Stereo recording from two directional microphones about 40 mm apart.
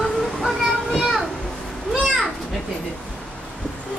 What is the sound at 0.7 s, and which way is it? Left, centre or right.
Children playing, centre.